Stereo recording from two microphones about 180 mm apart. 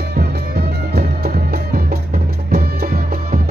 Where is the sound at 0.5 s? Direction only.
60° right (ahead or behind).